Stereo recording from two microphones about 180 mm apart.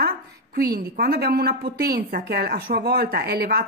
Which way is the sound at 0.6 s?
60° right (ahead or behind).